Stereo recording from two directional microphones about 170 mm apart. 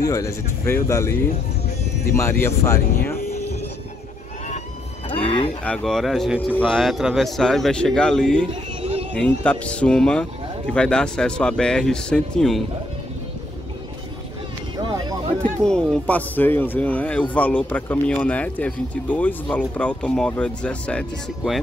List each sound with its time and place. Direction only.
0.0 s speech: 20° left (ahead or behind)
2.1 s speech: 15° left (ahead or behind)
5.1 s speech: 35° left (ahead or behind)
5.6 s speech: 5° left (ahead or behind)
14.8 s a sound: 25° right (ahead or behind)
15.6 s speech: 5° left (ahead or behind)